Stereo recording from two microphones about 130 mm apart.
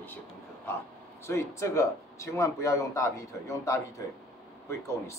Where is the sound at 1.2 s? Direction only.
20° left (ahead or behind).